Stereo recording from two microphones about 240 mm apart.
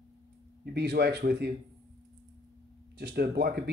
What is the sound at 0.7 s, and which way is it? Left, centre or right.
Speech, right.